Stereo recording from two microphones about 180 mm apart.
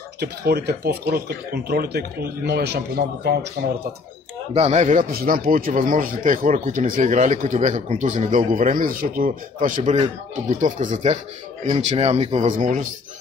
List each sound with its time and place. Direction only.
0.2 s speech: 65° right (ahead or behind)
4.6 s speech: 40° right (ahead or behind)